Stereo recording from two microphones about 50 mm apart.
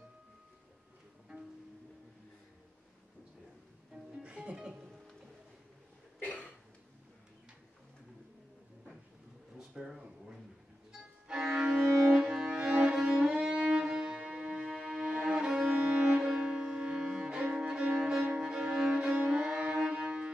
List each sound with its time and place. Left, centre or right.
3.9 s music: right
6.2 s cough: left
9.6 s a sound: centre
10.9 s music: centre
11.6 s cello: centre
12.9 s music: centre